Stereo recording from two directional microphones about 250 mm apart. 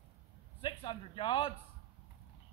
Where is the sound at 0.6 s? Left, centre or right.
Left.